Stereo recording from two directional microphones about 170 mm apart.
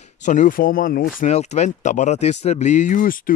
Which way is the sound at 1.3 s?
40° left (ahead or behind).